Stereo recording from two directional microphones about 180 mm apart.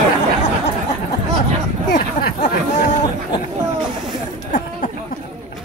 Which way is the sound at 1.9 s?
45° left (ahead or behind).